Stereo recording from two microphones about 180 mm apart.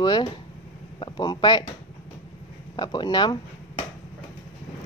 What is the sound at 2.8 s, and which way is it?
Speech, 25° left (ahead or behind).